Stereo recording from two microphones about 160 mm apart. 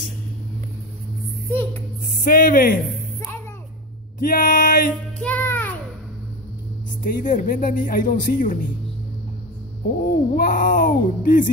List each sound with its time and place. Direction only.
1.5 s a sound: 15° left (ahead or behind)
2.1 s speech: 60° left (ahead or behind)
4.2 s speech: 60° left (ahead or behind)
5.2 s music: 10° left (ahead or behind)
7.0 s speech: 55° left (ahead or behind)
9.8 s a child's voice: 70° left (ahead or behind)
10.3 s speech: 60° left (ahead or behind)